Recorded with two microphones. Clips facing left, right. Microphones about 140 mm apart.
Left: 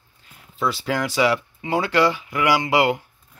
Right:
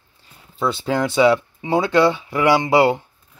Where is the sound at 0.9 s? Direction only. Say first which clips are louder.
Right 6 dB; 25° right (ahead or behind).